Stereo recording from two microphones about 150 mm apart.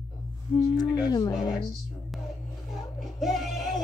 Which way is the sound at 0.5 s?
25° left (ahead or behind).